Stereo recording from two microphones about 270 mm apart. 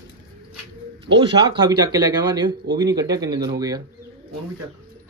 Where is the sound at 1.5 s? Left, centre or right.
Centre.